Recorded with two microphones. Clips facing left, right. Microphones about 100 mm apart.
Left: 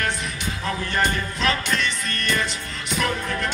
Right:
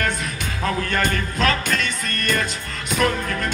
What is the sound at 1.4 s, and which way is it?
Music, 45° right (ahead or behind).